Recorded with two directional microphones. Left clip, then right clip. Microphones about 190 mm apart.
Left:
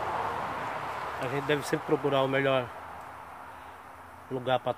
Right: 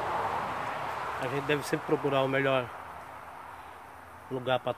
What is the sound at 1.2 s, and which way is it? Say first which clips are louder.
Speech: left 2 dB; 15° left (ahead or behind).